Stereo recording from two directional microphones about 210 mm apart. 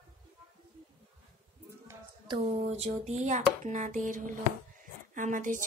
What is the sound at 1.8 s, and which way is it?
Speech, 20° right (ahead or behind).